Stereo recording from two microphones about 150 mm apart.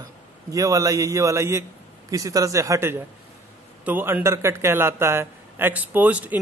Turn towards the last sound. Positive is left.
turn(degrees=-10)  # may be behind; listen again after turning